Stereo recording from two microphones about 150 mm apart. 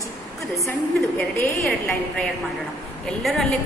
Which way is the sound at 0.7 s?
15° left (ahead or behind).